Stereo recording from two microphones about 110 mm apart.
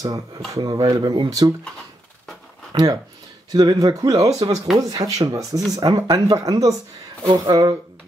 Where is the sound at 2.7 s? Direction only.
35° right (ahead or behind).